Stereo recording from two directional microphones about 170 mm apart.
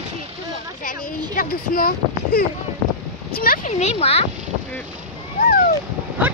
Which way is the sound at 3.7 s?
40° left (ahead or behind).